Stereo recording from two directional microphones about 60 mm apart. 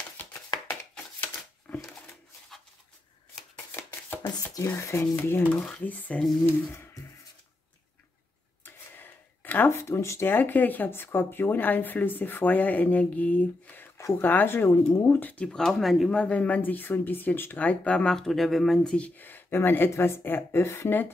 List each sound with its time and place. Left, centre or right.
0.9 s a sound: left
4.6 s speech: left
5.1 s a woman's voice: left
5.6 s speech: left
6.4 s a woman's voice: left
8.6 s a sound: left
9.7 s speech: left
10.2 s a woman's voice: left
15.3 s speech: centre
16.1 s speech: centre
18.9 s a woman's voice: left
20.6 s speech: left